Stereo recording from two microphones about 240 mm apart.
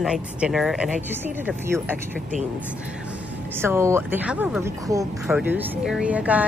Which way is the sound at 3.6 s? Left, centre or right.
Centre.